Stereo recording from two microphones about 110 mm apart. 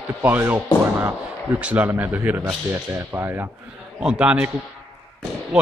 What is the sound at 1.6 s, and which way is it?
A man's voice, 15° right (ahead or behind).